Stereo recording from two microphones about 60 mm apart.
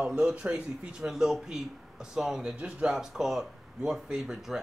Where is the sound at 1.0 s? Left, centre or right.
Centre.